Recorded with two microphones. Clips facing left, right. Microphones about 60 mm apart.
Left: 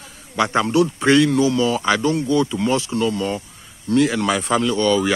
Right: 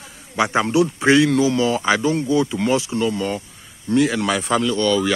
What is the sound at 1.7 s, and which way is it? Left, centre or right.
A man's voice, centre.